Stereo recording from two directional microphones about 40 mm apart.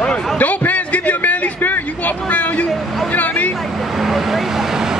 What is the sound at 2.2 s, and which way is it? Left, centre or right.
Speech, left.